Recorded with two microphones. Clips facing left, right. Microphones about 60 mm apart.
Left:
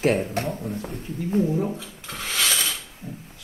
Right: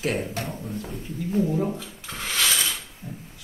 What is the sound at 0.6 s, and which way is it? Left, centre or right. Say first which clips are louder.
Dog: left 2 dB; left.